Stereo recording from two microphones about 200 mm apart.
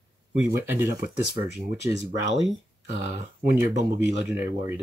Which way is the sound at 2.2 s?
65° right (ahead or behind).